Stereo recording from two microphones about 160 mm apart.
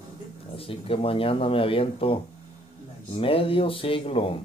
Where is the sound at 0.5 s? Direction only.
35° left (ahead or behind).